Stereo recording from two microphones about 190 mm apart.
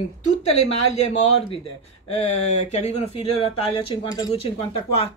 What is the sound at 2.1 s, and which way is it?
A woman's voice, 35° left (ahead or behind).